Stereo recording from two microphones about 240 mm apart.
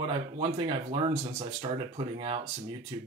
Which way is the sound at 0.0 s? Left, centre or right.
Right.